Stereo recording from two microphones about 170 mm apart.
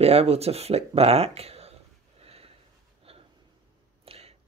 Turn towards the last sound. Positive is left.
turn(degrees=-35)  # may be behind; listen again after turning